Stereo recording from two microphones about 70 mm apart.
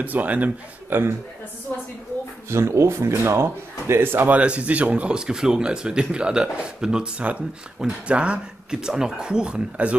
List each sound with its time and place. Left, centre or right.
0.0 s a man's voice: right
2.5 s speech: right
4.3 s speech: centre